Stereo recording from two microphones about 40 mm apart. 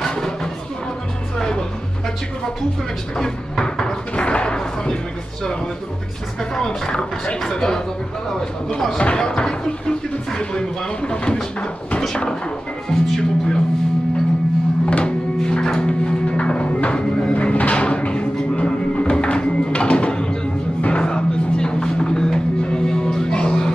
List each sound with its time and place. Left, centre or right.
0.1 s music: centre
3.2 s cupboard open or close: centre
6.5 s speech: centre
8.9 s speech: left
12.9 s speech: centre
14.9 s music: left